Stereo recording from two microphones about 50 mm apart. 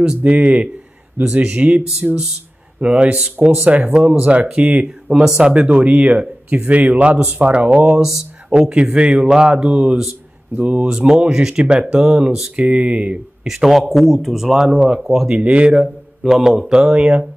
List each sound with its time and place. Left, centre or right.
0.0 s speech: centre
1.4 s speech: right
10.5 s speech: right
10.9 s speech: centre
13.5 s speech: centre; by 15.9 s right
16.2 s speech: centre